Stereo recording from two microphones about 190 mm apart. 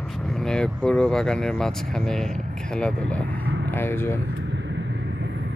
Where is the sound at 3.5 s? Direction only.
70° right (ahead or behind).